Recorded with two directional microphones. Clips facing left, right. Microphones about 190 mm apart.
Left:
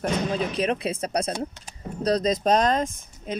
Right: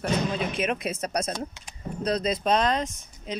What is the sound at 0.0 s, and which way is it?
Speech, 35° left (ahead or behind).